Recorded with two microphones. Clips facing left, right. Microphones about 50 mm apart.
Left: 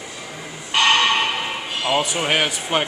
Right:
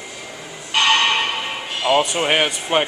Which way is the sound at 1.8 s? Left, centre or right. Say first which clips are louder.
Right 4 dB; centre.